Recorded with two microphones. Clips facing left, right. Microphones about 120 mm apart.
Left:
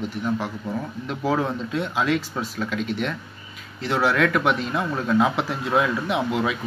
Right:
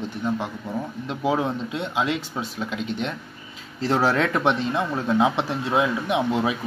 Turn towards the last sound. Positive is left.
turn(degrees=-25)  # may be behind; listen again after turning